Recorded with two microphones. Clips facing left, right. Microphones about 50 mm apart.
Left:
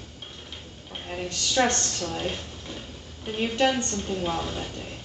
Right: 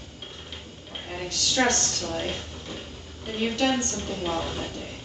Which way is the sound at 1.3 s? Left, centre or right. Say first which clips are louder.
Even; left.